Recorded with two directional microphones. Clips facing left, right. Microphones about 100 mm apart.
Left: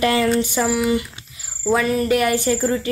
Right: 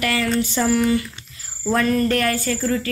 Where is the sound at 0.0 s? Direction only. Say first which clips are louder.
Left 4 dB; 25° left (ahead or behind).